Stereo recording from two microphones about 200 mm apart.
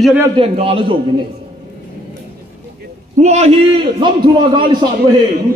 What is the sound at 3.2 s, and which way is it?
A man's voice, 35° right (ahead or behind).